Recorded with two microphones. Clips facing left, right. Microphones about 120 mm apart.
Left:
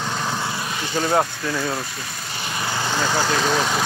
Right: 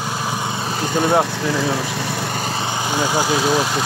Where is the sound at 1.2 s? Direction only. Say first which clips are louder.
Right 5 dB; 90° right; by 2.4 s 75° right (ahead or behind).